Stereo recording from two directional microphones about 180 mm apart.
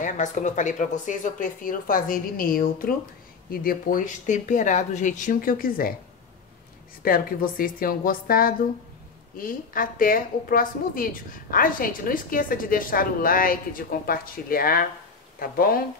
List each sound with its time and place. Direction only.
0.0 s a woman's voice: 45° left (ahead or behind)
7.0 s a woman's voice: 55° left (ahead or behind)